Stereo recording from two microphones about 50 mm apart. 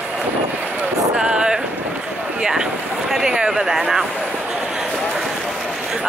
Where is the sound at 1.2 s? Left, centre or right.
Right.